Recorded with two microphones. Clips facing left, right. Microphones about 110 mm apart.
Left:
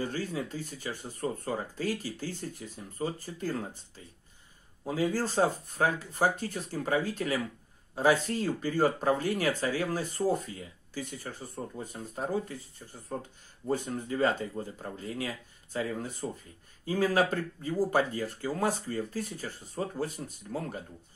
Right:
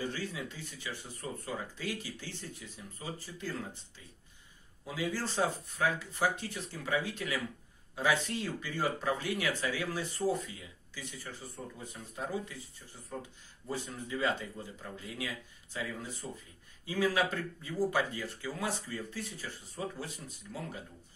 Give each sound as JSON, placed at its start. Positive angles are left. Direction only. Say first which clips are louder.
{"t": 0.0, "sound": "speech", "louder": "left 4 dB", "side_deg": 45}